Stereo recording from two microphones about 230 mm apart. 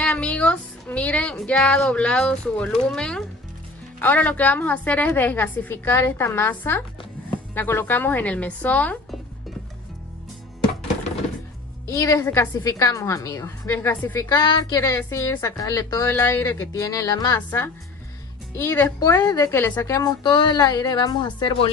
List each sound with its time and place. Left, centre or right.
0.0 s a woman's voice: centre
11.9 s a woman's voice: centre